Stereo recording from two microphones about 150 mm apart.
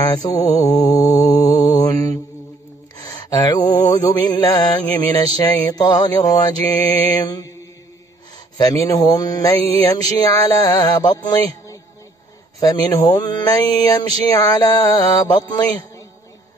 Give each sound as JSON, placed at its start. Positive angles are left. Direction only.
{"t": 0.1, "sound": "mantra", "side_deg": 25}
{"t": 8.5, "sound": "mantra", "side_deg": 25}